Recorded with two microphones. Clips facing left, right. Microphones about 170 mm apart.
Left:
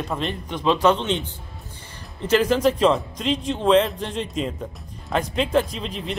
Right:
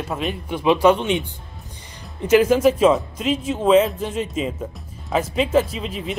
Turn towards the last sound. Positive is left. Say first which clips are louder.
# right 2 dB
turn(degrees=-5)  # may be behind; listen again after turning